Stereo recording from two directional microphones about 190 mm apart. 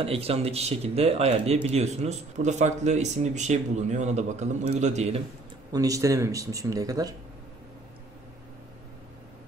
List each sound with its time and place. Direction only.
0.0 s speech: 30° right (ahead or behind)
5.7 s speech: 20° right (ahead or behind)